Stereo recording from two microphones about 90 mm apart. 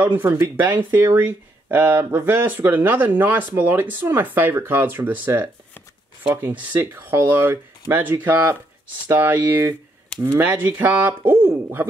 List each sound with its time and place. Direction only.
0.0 s speech: 20° right (ahead or behind)